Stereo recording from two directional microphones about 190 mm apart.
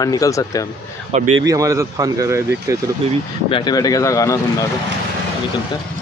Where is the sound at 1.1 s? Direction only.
35° right (ahead or behind).